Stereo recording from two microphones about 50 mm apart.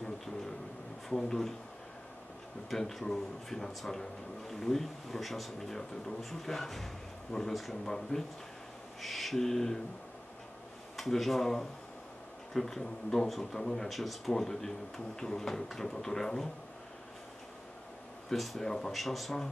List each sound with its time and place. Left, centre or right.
1.0 s speech: centre
2.7 s speech: centre
8.1 s speech: left
9.0 s owl: centre
11.0 s speech: centre
18.3 s speech: centre